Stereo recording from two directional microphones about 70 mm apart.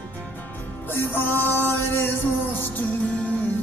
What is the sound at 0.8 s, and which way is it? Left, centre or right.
Music, left.